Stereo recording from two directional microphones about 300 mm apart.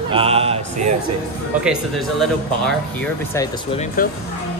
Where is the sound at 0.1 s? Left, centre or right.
Centre.